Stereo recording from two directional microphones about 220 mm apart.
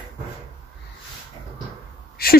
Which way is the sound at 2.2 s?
45° left (ahead or behind).